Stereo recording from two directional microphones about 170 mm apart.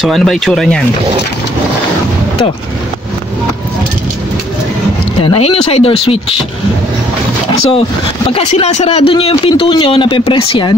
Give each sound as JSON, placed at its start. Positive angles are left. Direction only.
{"t": 0.0, "sound": "speech", "side_deg": 0}
{"t": 5.2, "sound": "speech", "side_deg": 30}
{"t": 8.3, "sound": "speech", "side_deg": 35}